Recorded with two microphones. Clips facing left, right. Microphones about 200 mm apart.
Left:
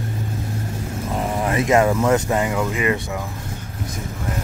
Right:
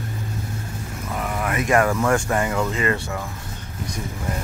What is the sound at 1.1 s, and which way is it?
Speech, 25° left (ahead or behind).